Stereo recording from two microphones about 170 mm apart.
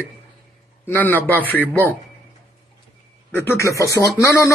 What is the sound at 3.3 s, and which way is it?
Speech, 15° left (ahead or behind).